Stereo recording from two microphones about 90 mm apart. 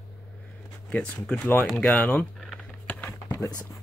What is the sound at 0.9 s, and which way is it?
Speech, 10° left (ahead or behind).